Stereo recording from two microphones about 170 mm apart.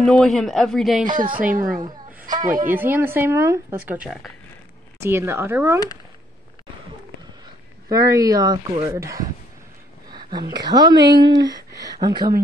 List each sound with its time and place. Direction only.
0.0 s speech: 5° left (ahead or behind)
1.4 s a child's voice: 55° right (ahead or behind)
1.8 s a sound: 25° right (ahead or behind)
2.4 s a child's voice: 50° right (ahead or behind)
2.7 s speech: 10° right (ahead or behind)
7.9 s speech: 20° right (ahead or behind)
10.0 s whispering: 25° right (ahead or behind)
10.5 s speech: 25° right (ahead or behind)